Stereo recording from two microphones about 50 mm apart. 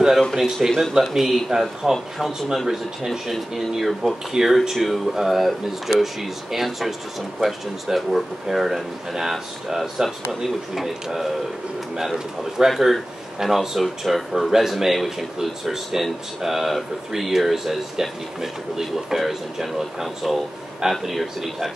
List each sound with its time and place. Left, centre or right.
0.3 s a man's voice: centre